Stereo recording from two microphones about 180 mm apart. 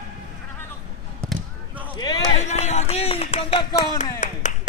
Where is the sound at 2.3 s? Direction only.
40° left (ahead or behind).